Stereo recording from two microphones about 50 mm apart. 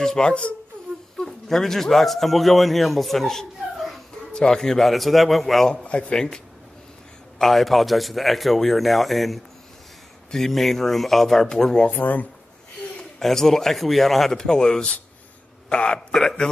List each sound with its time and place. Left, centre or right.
0.0 s speech: centre
0.3 s speech: left
1.1 s a man's voice: centre
4.3 s a sound: centre
4.6 s speech: centre
5.9 s speech: centre
7.3 s a man's voice: centre
11.9 s speech: left
13.2 s a man's voice: centre